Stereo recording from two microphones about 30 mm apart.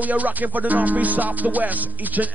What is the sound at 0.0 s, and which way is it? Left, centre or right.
Music, right.